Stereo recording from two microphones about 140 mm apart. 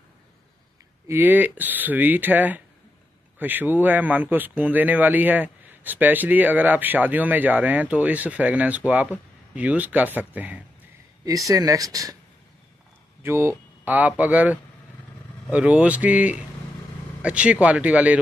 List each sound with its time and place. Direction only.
1.0 s a man's voice: 15° right (ahead or behind)
11.2 s speech: 25° right (ahead or behind)
13.2 s a man's voice: 20° right (ahead or behind)